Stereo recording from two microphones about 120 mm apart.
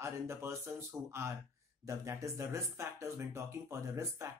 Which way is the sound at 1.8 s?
25° right (ahead or behind).